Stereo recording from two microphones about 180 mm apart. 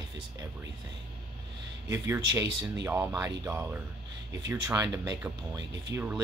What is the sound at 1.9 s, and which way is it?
Speech, 15° right (ahead or behind).